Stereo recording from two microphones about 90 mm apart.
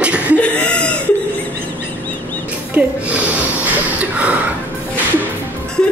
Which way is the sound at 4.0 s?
15° right (ahead or behind).